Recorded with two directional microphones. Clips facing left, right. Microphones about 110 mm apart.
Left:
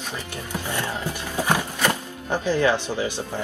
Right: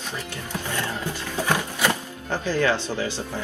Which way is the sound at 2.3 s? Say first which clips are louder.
Left 2 dB; 15° left (ahead or behind).